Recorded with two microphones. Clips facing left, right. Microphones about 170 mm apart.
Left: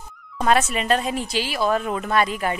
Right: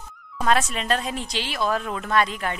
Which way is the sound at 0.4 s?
5° left (ahead or behind).